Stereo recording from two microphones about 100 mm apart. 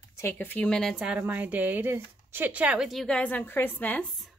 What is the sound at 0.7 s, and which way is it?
Speech, 5° left (ahead or behind).